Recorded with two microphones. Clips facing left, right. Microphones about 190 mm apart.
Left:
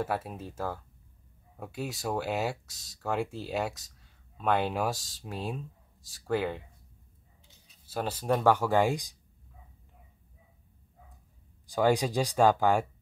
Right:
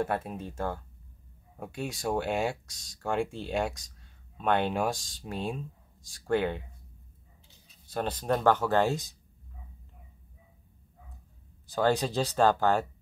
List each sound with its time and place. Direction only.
0.0 s speech: 5° left (ahead or behind)
7.8 s speech: 5° left (ahead or behind)
11.6 s speech: 15° left (ahead or behind)